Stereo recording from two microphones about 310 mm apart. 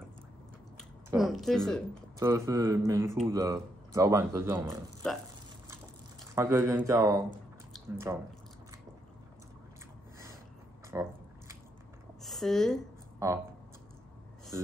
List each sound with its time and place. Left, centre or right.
0.7 s speech: centre
2.1 s speech: centre
6.3 s speech: centre
10.9 s squish: centre
12.2 s speech: centre